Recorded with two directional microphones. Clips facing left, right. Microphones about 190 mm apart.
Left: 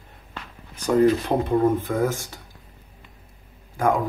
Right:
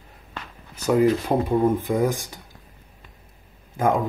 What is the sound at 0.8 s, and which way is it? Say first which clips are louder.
Speech: left 1 dB; 5° right (ahead or behind).